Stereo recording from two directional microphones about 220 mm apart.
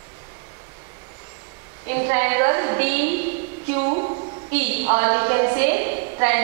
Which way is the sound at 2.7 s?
10° right (ahead or behind).